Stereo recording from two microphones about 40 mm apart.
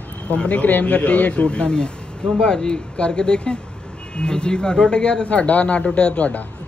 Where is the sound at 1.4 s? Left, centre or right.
Left.